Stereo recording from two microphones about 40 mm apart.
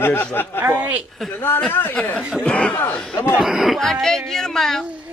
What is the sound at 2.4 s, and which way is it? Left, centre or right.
Speech, left.